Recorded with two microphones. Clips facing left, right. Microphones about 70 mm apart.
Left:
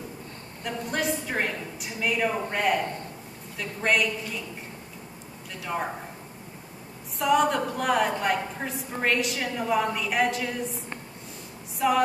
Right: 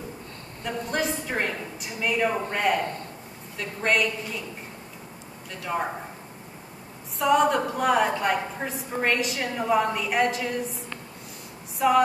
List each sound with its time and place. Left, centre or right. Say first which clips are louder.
0.7 s a woman's voice: right 1 dB; centre
5.7 s a woman's voice: right 2 dB; centre
7.2 s a woman's voice: right 2 dB; centre
11.8 s a woman's voice: right 2 dB; centre